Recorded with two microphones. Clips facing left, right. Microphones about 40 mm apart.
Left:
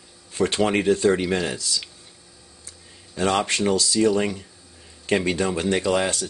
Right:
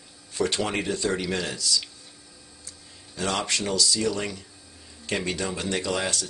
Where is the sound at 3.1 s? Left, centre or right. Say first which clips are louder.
Left 5 dB; left.